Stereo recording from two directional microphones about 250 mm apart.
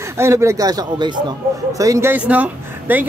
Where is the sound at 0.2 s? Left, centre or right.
Centre.